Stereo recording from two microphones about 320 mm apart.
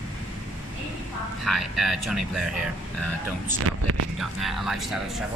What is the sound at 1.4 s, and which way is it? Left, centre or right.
Speech, centre.